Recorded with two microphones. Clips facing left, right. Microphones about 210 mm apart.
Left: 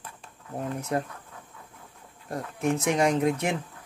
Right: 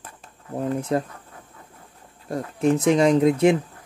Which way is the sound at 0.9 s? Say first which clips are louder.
Right 4 dB; 30° right (ahead or behind).